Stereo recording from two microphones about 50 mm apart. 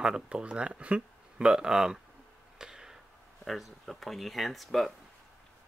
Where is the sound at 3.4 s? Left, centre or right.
Centre.